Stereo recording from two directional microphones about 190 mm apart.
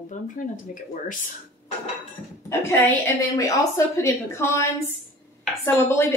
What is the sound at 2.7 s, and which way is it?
A woman's voice, 15° left (ahead or behind).